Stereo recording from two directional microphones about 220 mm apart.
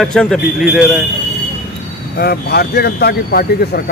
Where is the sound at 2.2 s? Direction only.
45° left (ahead or behind).